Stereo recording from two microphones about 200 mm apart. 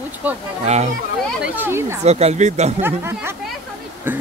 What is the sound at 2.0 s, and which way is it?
Speech, 30° right (ahead or behind).